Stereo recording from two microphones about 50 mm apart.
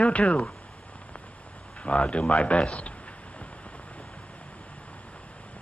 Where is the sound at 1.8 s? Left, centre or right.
Left.